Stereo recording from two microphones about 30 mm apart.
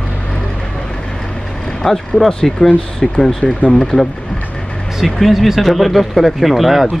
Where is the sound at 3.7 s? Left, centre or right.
Left.